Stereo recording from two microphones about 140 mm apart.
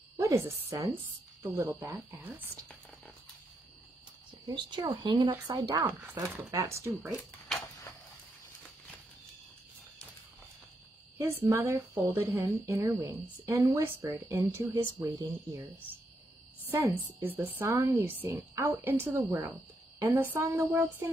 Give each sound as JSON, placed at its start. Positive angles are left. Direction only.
{"t": 0.2, "sound": "a woman's voice", "side_deg": -20}
{"t": 4.5, "sound": "a woman's voice", "side_deg": -35}
{"t": 11.1, "sound": "speech", "side_deg": -20}
{"t": 17.3, "sound": "a woman's voice", "side_deg": -15}